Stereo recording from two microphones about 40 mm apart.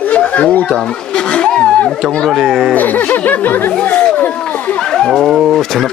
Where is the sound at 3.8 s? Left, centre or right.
Left.